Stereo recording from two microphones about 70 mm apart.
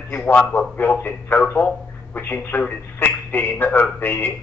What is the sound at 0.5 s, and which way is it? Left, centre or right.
A man's voice, left.